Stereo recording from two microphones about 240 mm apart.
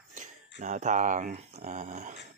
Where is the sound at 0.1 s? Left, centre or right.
Right.